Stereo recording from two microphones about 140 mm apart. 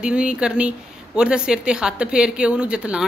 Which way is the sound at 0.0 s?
5° right (ahead or behind).